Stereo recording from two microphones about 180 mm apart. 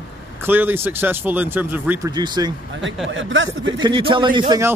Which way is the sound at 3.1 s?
90° right.